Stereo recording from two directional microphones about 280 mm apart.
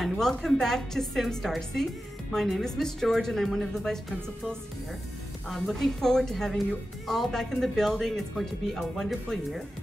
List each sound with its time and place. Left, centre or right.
0.0 s speech: centre
5.5 s speech: centre